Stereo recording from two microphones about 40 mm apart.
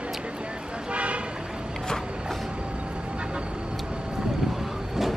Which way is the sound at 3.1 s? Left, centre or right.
Right.